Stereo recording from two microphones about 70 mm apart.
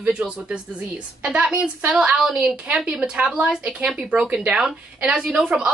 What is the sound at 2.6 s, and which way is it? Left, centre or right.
Speech, centre.